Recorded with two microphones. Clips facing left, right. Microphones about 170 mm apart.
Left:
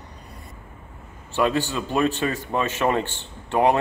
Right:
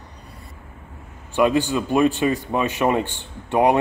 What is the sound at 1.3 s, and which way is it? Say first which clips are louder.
Speech: right 4 dB; 15° right (ahead or behind).